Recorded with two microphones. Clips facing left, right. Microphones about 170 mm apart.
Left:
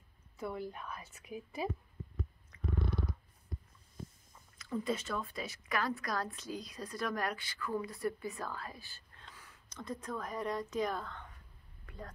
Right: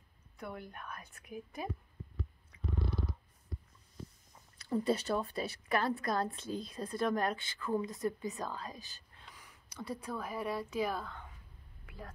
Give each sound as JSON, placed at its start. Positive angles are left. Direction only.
{"t": 0.4, "sound": "a woman's voice", "side_deg": 0}
{"t": 4.6, "sound": "a woman's voice", "side_deg": -35}
{"t": 11.8, "sound": "a sound", "side_deg": -10}